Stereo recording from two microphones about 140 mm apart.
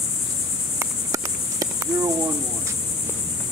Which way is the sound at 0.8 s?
25° right (ahead or behind).